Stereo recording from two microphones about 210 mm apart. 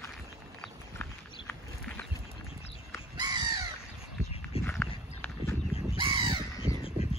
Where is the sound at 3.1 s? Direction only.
20° right (ahead or behind).